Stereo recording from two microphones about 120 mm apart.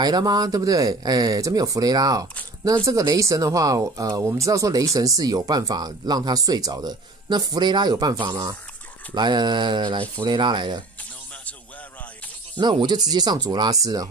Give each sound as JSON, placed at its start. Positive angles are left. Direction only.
{"t": 0.0, "sound": "speech", "side_deg": -35}
{"t": 12.5, "sound": "speech", "side_deg": -40}